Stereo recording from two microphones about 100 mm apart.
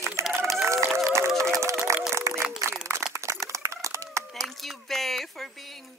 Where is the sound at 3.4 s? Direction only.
30° right (ahead or behind).